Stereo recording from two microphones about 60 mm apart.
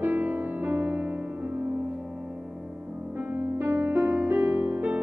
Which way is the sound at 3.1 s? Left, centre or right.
Right.